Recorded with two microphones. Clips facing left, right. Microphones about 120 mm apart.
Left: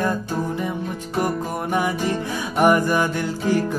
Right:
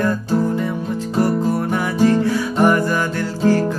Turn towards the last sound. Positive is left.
turn(degrees=15)  # may be behind; listen again after turning